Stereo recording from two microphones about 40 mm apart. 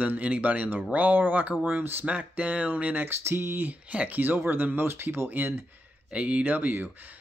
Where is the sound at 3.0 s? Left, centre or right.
Right.